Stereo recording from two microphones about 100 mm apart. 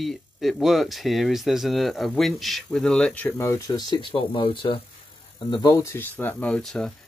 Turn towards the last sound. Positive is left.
turn(degrees=5)  # may be behind; listen again after turning